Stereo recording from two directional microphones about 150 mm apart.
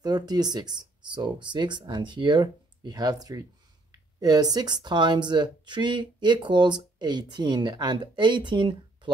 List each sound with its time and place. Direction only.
0.0 s speech: 25° right (ahead or behind)